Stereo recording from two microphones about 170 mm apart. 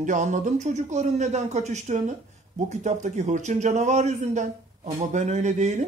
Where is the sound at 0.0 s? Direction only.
45° right (ahead or behind).